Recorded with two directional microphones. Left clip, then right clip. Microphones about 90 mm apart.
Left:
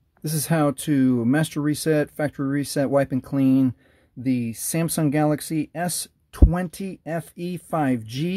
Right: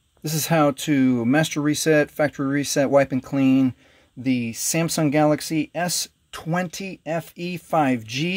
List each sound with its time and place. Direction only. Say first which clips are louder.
0.2 s speech: right 3 dB; 40° left (ahead or behind)
1.2 s speech: right 2 dB; 30° left (ahead or behind)